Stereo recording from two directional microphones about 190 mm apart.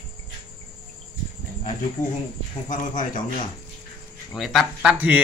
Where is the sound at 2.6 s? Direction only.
40° left (ahead or behind).